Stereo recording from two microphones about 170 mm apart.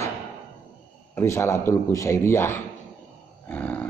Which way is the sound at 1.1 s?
15° left (ahead or behind).